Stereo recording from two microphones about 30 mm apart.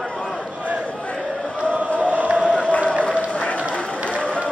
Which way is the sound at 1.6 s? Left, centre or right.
Right.